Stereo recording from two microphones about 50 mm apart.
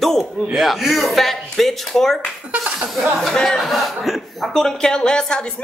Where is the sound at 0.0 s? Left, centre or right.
Centre.